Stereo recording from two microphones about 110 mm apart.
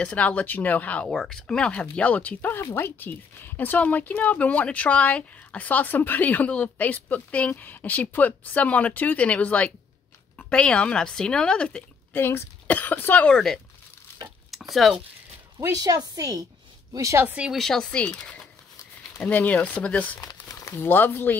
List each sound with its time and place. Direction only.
0.0 s speech: 10° left (ahead or behind)
13.3 s speech: 5° left (ahead or behind)
14.5 s a sound: centre (ahead or behind)
15.6 s a woman's voice: 30° right (ahead or behind)
17.5 s speech: 5° left (ahead or behind)
20.2 s speech: 35° left (ahead or behind)